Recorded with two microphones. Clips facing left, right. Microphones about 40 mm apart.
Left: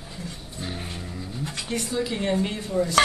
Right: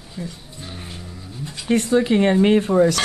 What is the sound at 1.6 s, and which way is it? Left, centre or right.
Speech, right.